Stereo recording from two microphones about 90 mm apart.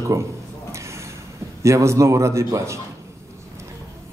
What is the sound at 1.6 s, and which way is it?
A man's voice, 35° right (ahead or behind).